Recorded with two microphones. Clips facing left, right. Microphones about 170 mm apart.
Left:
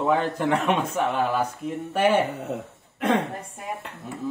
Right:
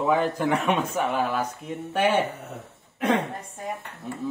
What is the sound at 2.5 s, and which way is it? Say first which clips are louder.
Throat clearing: left 8 dB; 80° left.